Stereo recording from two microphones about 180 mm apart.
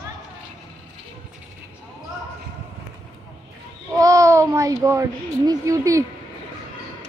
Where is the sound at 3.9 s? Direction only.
15° right (ahead or behind).